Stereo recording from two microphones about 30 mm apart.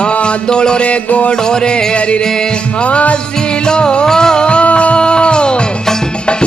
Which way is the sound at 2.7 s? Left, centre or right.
Left.